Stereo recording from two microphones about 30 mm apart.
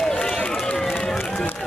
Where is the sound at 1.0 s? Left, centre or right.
Left.